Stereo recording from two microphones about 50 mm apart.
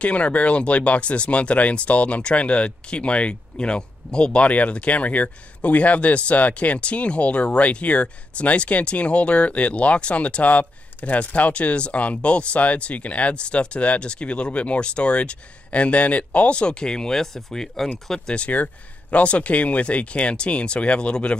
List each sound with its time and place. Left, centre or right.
0.0 s speech: left; by 18.3 s centre
18.3 s speech: left